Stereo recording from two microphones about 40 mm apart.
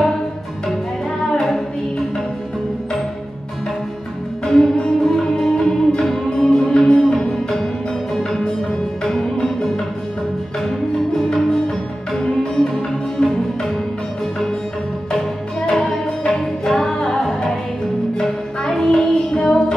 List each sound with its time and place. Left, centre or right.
4.5 s music: centre
11.3 s music: centre
13.2 s music: left
15.7 s music: centre